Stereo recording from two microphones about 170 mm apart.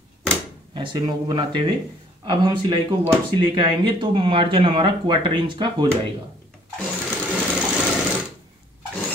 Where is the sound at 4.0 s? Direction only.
30° right (ahead or behind).